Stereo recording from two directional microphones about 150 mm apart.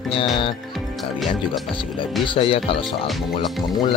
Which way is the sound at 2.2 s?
35° left (ahead or behind).